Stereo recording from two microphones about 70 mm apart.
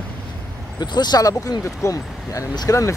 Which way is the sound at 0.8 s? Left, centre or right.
Left.